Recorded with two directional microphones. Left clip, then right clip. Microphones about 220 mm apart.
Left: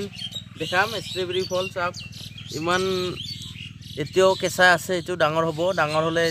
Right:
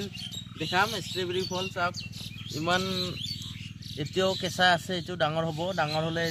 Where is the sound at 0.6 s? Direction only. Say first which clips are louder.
Left 4 dB; 30° left (ahead or behind).